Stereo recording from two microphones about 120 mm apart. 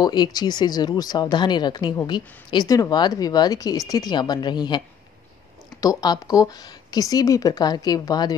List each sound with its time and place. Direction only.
0.0 s speech: 35° left (ahead or behind)